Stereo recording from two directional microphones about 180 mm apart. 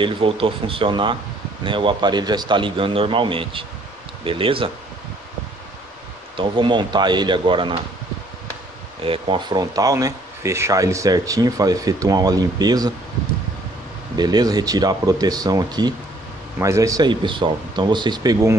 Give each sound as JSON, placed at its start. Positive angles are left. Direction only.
{"t": 0.0, "sound": "speech", "side_deg": -30}
{"t": 6.3, "sound": "speech", "side_deg": -25}
{"t": 9.0, "sound": "speech", "side_deg": -30}
{"t": 14.1, "sound": "speech", "side_deg": -25}